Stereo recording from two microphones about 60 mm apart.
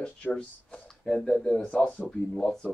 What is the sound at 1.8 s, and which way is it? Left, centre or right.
Speech, left.